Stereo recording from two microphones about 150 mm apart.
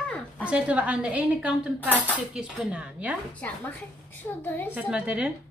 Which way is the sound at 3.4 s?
10° left (ahead or behind).